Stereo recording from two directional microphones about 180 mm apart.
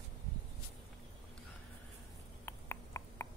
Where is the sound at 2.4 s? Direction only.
15° left (ahead or behind).